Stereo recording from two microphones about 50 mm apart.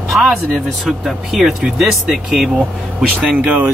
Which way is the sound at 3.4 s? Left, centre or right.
Right.